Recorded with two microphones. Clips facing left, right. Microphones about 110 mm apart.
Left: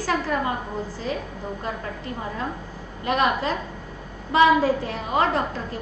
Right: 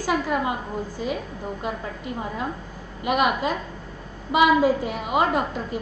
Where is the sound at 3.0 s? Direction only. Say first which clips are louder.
Even; 15° right (ahead or behind).